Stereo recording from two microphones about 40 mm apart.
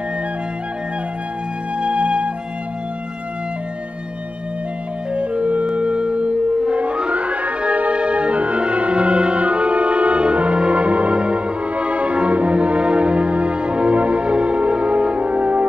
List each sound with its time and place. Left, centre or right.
1.8 s music: right
5.1 s music: right
5.8 s theremin: right